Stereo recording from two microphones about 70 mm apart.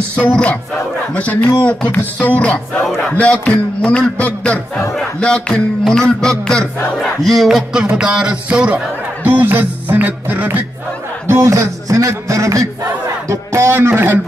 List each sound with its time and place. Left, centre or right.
0.1 s a man's voice: centre
7.0 s a sound: centre
7.9 s music: centre
8.6 s speech: right
11.2 s a man's voice: right